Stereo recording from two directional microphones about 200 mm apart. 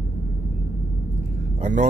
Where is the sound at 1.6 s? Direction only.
35° right (ahead or behind).